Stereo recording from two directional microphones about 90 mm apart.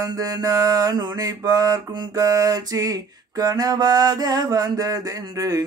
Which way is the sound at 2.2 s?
40° right (ahead or behind).